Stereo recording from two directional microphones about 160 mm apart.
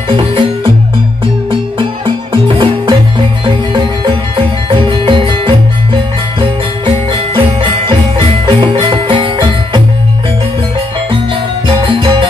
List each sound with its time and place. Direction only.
0.1 s music: 35° right (ahead or behind)
7.1 s music: 30° right (ahead or behind)
11.6 s music: 35° right (ahead or behind)